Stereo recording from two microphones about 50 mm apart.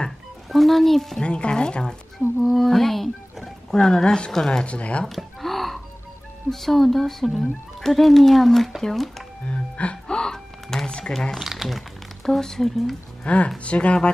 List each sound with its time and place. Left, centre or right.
0.5 s speech: centre
1.2 s speech: left
2.4 s speech: centre
3.7 s speech: centre
4.6 s speech: left
5.0 s a sound: centre
6.5 s speech: centre
9.5 s a sound: left
11.3 s speech: centre
12.3 s speech: centre
13.2 s speech: left